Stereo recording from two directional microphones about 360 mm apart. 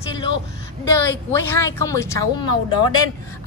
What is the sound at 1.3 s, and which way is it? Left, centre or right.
A woman's voice, centre.